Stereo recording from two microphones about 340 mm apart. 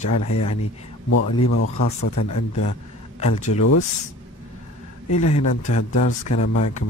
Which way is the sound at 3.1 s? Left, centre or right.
Centre.